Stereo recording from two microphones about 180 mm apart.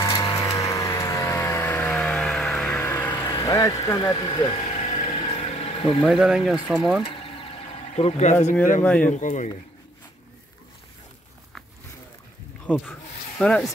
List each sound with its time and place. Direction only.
0.0 s a sound: 20° left (ahead or behind)
3.1 s speech: 25° left (ahead or behind)
4.6 s vehicle: 30° left (ahead or behind)
6.0 s speech: centre (ahead or behind)
7.1 s a sound: 30° left (ahead or behind)
9.0 s speech: 45° left (ahead or behind)
12.6 s speech: 10° left (ahead or behind)